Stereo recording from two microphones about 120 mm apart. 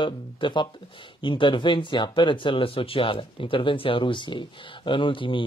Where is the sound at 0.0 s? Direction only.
40° left (ahead or behind).